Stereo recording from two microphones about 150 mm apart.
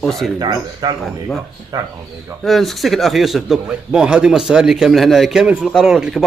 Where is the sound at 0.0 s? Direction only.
Centre (ahead or behind).